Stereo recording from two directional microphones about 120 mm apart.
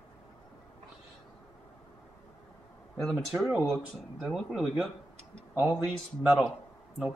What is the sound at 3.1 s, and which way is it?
Speech, 5° right (ahead or behind).